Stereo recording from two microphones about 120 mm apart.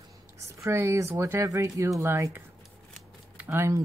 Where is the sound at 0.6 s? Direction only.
25° right (ahead or behind).